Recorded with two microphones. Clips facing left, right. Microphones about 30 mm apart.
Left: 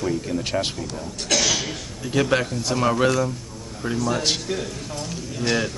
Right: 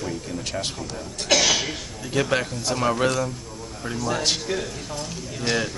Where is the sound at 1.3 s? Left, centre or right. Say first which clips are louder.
Right 2 dB; centre.